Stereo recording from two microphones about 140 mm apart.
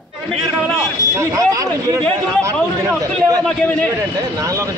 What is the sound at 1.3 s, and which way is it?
Speech, 25° right (ahead or behind).